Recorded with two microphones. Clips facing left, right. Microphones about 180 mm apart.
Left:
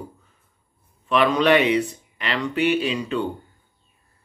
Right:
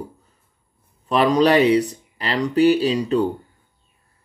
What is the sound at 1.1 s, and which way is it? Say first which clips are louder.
Speech: right 2 dB; 35° right (ahead or behind).